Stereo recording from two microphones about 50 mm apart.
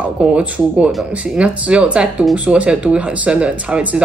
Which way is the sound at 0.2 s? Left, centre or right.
Right.